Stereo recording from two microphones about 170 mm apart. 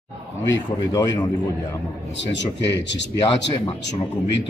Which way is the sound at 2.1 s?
90° left.